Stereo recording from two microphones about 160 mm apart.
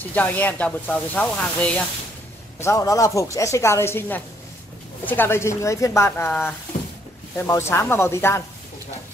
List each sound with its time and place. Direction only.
0.1 s speech: 10° left (ahead or behind)
2.6 s speech: 20° left (ahead or behind)